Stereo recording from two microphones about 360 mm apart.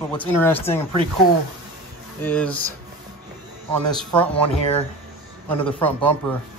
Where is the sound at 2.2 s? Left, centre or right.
Centre.